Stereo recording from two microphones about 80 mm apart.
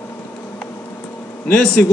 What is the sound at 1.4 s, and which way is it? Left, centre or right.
Speech, centre.